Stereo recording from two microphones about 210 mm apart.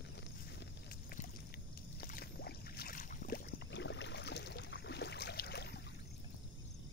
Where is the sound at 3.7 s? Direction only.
60° left (ahead or behind).